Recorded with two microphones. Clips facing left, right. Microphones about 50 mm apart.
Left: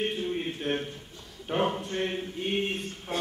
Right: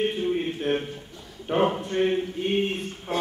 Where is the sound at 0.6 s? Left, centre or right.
Centre.